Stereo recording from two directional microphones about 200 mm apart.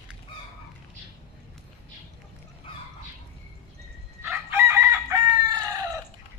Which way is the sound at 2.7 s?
25° left (ahead or behind).